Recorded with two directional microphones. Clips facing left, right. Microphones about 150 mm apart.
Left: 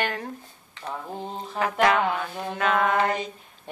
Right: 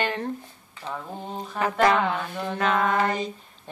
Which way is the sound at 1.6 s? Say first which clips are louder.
Right 1 dB; centre (ahead or behind).